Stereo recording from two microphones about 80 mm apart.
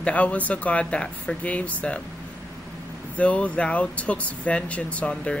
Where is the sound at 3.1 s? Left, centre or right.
Centre.